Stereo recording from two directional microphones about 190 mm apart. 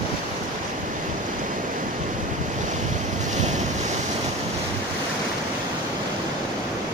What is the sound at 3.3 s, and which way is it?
Waves, 40° right (ahead or behind).